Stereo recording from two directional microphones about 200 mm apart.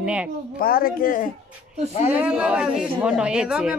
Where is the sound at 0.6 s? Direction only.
45° left (ahead or behind).